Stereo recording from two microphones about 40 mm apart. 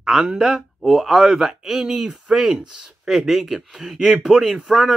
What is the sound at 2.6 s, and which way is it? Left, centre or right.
Speech, right.